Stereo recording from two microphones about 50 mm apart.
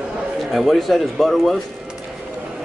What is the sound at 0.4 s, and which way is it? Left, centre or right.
Speech, centre.